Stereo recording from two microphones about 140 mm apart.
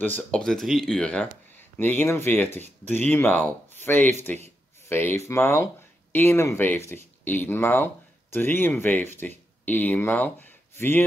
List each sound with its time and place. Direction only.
0.3 s speech: 5° left (ahead or behind)